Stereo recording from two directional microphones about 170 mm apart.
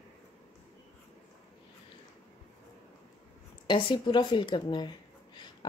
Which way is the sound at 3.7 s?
30° left (ahead or behind).